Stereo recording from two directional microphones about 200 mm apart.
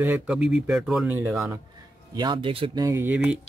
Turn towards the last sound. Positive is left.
turn(degrees=-10)  # may be behind; listen again after turning